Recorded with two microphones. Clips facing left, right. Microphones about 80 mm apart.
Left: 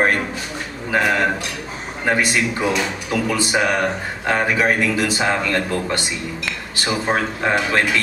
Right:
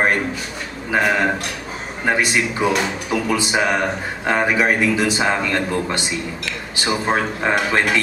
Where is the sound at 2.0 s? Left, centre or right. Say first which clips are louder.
Even; right.